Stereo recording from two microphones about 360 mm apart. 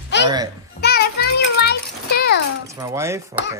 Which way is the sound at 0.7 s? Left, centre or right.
Left.